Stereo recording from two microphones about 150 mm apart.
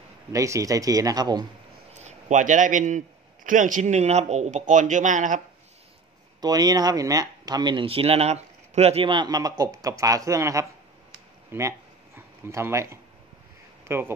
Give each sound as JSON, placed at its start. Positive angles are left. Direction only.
{"t": 0.3, "sound": "speech", "side_deg": -20}
{"t": 2.0, "sound": "speech", "side_deg": -50}
{"t": 6.4, "sound": "speech", "side_deg": -25}